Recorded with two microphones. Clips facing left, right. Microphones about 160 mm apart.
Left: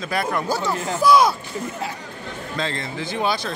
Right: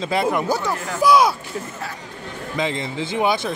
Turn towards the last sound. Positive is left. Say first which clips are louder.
# right 3 dB
turn(degrees=-20)  # may be behind; listen again after turning